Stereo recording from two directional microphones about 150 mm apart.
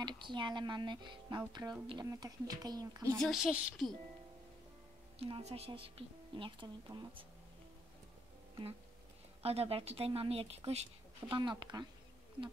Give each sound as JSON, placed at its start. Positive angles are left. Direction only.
{"t": 0.0, "sound": "a woman's voice", "side_deg": -30}
{"t": 3.2, "sound": "speech", "side_deg": 0}
{"t": 5.2, "sound": "speech", "side_deg": -40}
{"t": 9.4, "sound": "speech", "side_deg": -40}
{"t": 11.3, "sound": "a woman's voice", "side_deg": -30}